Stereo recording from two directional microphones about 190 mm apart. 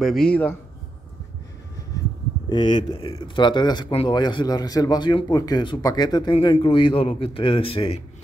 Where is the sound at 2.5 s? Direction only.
25° left (ahead or behind).